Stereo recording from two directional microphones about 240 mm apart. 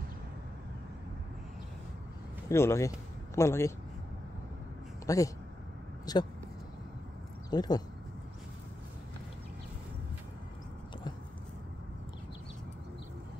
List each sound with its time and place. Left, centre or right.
2.5 s speech: centre
5.0 s speech: centre
7.5 s speech: centre